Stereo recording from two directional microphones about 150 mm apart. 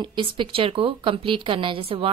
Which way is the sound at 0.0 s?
30° right (ahead or behind).